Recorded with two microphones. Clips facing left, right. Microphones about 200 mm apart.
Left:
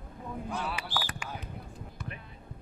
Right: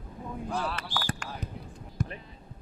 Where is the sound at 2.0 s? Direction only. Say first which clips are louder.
Right 9 dB; 45° right (ahead or behind).